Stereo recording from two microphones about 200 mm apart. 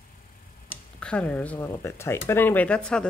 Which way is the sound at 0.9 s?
5° left (ahead or behind).